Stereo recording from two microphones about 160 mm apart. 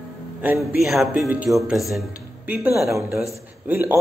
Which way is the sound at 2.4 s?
15° right (ahead or behind).